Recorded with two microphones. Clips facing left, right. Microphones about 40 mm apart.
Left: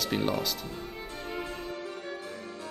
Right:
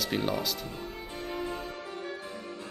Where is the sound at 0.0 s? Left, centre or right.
Centre.